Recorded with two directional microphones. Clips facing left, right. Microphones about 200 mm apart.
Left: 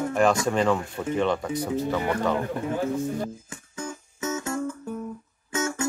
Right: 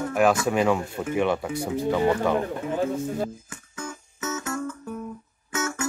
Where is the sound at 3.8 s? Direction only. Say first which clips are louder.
Left 2 dB; 25° left (ahead or behind).